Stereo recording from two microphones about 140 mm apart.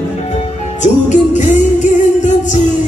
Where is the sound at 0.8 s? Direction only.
60° left (ahead or behind).